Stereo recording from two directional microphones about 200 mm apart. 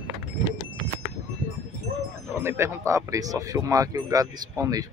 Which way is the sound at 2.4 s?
15° right (ahead or behind).